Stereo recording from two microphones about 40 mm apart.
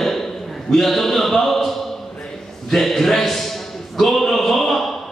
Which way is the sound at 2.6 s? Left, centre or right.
Centre.